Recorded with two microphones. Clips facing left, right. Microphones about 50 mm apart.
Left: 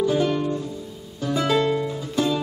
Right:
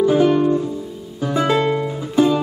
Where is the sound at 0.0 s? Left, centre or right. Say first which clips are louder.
Right 7 dB; centre.